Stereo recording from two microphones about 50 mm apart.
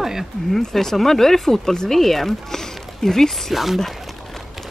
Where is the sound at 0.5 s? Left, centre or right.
Centre.